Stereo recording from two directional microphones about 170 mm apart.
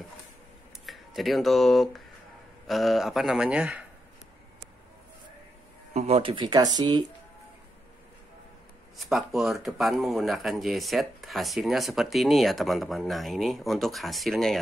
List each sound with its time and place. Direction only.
0.8 s speech: centre (ahead or behind)
5.9 s speech: 35° right (ahead or behind)
8.9 s speech: centre (ahead or behind)